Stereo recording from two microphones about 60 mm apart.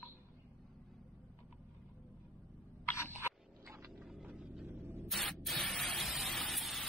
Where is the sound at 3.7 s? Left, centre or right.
Right.